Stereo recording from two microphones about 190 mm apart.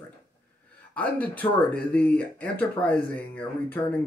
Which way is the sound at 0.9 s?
5° left (ahead or behind).